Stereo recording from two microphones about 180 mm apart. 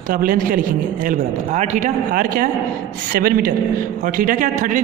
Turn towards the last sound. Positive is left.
turn(degrees=-45)  # may be behind; listen again after turning